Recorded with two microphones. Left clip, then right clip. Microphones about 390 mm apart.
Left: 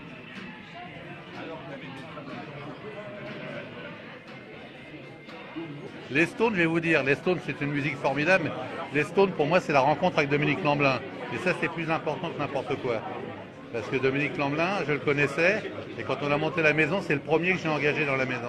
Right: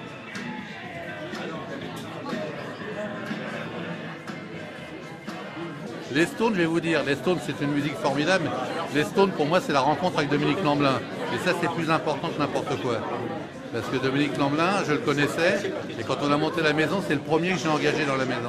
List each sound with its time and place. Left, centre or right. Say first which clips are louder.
6.1 s speech: right 1 dB; left
14.0 s speech: right 2 dB; left